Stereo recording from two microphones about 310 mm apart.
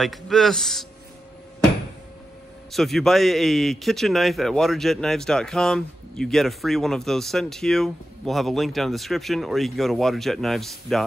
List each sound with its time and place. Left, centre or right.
0.0 s a man's voice: centre
2.7 s a man's voice: centre